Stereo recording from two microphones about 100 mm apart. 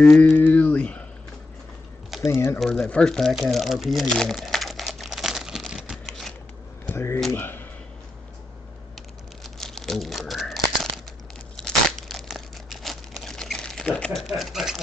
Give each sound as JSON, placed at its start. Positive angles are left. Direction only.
{"t": 0.0, "sound": "speech", "side_deg": 10}
{"t": 2.2, "sound": "speech", "side_deg": 25}
{"t": 2.6, "sound": "speech", "side_deg": 5}
{"t": 3.3, "sound": "crumpling", "side_deg": 0}
{"t": 6.9, "sound": "a sound", "side_deg": 25}
{"t": 7.3, "sound": "speech", "side_deg": 20}
{"t": 9.4, "sound": "crumpling", "side_deg": 5}
{"t": 13.8, "sound": "speech", "side_deg": 10}
{"t": 14.4, "sound": "speech", "side_deg": -5}